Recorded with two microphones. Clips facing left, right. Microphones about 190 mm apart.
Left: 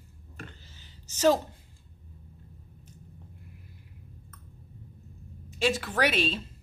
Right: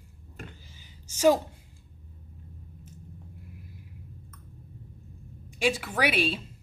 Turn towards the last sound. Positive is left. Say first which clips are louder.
# even
turn(degrees=-10)  # may be behind; listen again after turning